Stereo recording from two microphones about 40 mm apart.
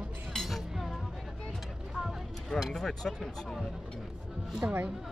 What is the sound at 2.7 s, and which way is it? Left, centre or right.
Speech, centre.